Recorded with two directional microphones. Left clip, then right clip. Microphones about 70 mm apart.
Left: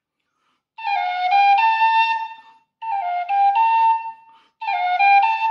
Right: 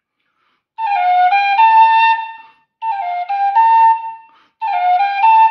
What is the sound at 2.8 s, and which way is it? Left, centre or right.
Flute, centre.